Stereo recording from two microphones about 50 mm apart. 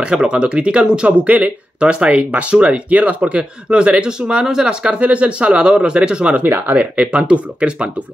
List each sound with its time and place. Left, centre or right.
0.0 s speech: centre
6.4 s speech: right